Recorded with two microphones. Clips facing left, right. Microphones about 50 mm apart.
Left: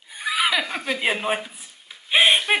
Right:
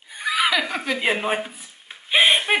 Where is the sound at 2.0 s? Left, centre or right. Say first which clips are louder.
Even; centre.